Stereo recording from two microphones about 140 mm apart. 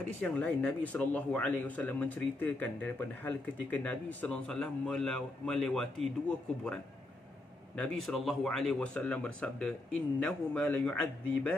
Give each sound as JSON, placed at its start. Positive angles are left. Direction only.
{"t": 0.2, "sound": "speech", "side_deg": 10}